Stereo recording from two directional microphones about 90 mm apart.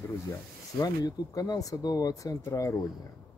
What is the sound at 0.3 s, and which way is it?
Speech, 40° left (ahead or behind).